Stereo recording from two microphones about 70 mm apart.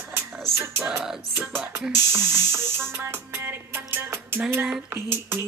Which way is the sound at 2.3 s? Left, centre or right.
Right.